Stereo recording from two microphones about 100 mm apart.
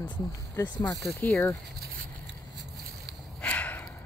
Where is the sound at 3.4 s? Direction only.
15° left (ahead or behind).